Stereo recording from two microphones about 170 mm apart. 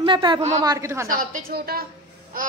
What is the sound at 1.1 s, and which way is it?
Speech, 55° right (ahead or behind).